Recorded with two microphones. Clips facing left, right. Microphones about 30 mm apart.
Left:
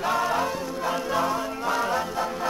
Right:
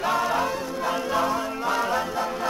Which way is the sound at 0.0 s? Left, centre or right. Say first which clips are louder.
Right 1 dB; centre.